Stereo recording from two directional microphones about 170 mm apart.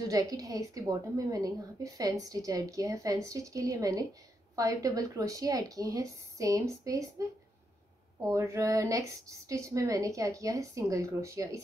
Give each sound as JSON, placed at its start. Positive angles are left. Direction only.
{"t": 0.1, "sound": "a woman's voice", "side_deg": -20}
{"t": 8.3, "sound": "a woman's voice", "side_deg": -15}